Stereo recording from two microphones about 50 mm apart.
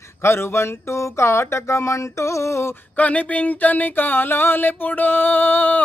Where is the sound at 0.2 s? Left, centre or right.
Left.